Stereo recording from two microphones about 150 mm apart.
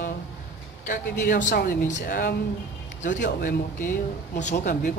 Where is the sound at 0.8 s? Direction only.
60° left (ahead or behind); by 1.8 s 80° left.